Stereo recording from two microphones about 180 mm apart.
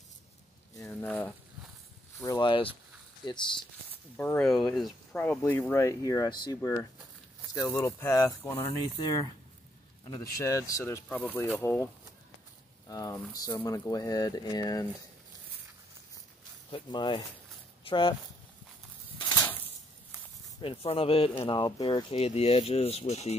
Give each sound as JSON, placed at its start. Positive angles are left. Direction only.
{"t": 0.7, "sound": "a sound", "side_deg": 15}
{"t": 2.2, "sound": "speech", "side_deg": 25}
{"t": 4.2, "sound": "speech", "side_deg": 5}
{"t": 16.7, "sound": "speech", "side_deg": 25}
{"t": 19.1, "sound": "a sound", "side_deg": 25}
{"t": 20.6, "sound": "speech", "side_deg": 30}